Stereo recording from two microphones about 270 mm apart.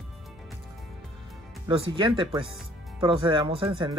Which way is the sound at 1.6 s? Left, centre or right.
Centre.